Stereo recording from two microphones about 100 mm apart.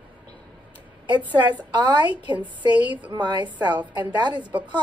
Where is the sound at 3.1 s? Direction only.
45° right (ahead or behind).